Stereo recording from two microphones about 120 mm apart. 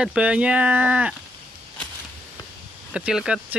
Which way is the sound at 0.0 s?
5° right (ahead or behind).